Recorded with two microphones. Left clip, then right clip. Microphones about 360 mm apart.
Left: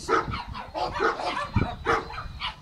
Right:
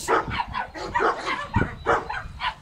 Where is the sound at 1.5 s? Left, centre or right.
Right.